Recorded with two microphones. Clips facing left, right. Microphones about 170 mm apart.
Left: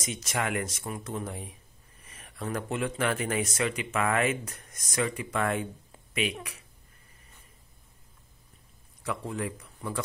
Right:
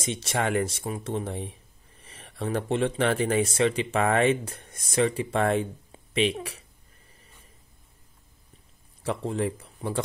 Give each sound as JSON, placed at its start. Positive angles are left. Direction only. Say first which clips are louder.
{"t": 0.0, "sound": "speech", "louder": "right 4 dB", "side_deg": -30}
{"t": 9.0, "sound": "speech", "louder": "right 5 dB", "side_deg": -30}